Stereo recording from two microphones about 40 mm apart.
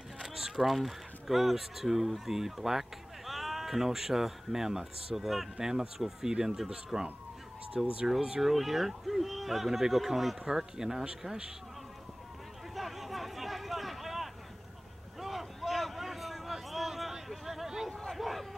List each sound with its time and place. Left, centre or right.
0.2 s speech: centre
10.4 s speech: centre
12.7 s a sound: centre